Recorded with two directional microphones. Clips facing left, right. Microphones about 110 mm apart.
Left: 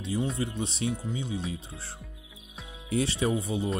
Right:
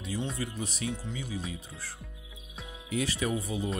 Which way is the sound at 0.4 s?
25° left (ahead or behind).